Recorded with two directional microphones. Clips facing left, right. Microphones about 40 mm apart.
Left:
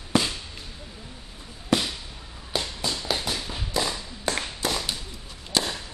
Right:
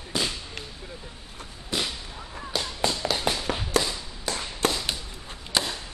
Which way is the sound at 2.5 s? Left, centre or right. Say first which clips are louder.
Left 1 dB; centre.